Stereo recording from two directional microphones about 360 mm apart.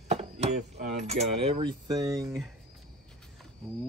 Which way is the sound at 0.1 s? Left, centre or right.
Centre.